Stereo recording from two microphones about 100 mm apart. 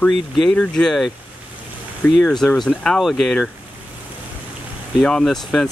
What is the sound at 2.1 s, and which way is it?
Speech, 5° left (ahead or behind).